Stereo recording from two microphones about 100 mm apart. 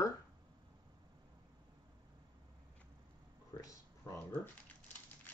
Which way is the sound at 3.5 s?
45° left (ahead or behind).